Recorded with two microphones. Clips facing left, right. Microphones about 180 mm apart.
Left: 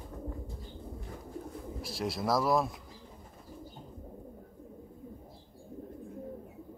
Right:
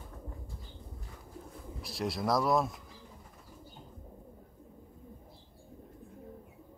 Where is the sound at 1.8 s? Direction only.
Centre (ahead or behind).